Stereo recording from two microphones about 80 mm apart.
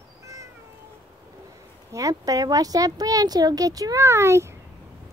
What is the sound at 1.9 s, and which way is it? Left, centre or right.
Speech, right.